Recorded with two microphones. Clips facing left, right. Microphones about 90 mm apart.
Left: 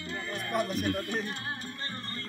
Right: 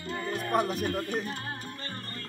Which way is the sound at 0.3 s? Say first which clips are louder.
Right 4 dB; 40° right (ahead or behind).